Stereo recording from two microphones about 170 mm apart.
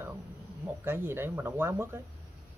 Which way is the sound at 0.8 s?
15° right (ahead or behind).